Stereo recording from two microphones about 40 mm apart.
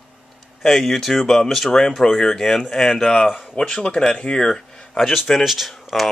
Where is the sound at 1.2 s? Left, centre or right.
Centre.